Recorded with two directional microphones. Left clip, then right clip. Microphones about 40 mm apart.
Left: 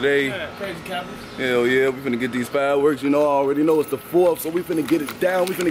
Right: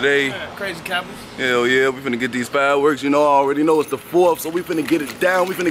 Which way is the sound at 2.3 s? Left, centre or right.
Centre.